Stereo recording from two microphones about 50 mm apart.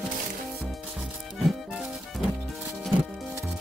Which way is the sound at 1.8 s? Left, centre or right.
Centre.